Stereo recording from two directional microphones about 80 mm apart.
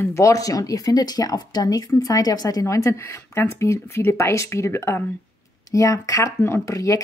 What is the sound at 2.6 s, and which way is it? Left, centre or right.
Speech, left.